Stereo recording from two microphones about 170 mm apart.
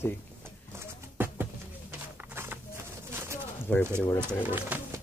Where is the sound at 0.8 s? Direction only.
15° right (ahead or behind).